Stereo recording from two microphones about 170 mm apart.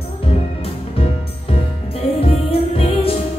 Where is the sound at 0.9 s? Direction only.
35° left (ahead or behind).